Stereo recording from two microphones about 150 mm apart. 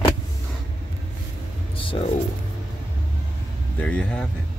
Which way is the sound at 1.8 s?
35° left (ahead or behind).